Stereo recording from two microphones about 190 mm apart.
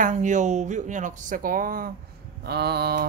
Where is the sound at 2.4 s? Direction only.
60° right (ahead or behind).